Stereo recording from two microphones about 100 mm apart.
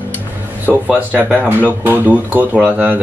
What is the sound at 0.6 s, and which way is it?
Speech, 20° right (ahead or behind).